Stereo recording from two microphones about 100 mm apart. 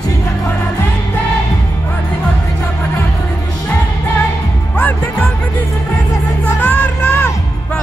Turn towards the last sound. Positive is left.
turn(degrees=15)  # may be behind; listen again after turning